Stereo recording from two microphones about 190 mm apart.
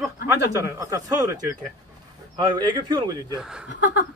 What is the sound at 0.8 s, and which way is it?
Speech, 15° right (ahead or behind).